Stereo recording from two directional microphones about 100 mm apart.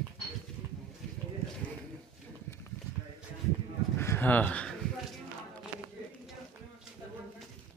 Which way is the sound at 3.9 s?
25° left (ahead or behind).